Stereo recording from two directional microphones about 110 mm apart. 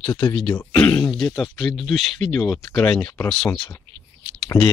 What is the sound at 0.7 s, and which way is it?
Throat clearing, 10° left (ahead or behind).